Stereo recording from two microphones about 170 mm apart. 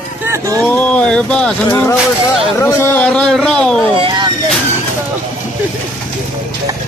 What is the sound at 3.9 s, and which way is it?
Speech, 25° right (ahead or behind).